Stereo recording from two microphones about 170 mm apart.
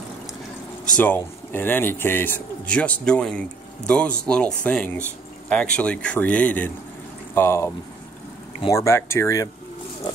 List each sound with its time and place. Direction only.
0.9 s speech: 10° left (ahead or behind)
8.7 s speech: 15° left (ahead or behind)